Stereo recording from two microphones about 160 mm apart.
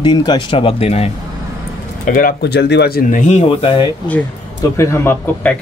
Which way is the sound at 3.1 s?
50° left (ahead or behind).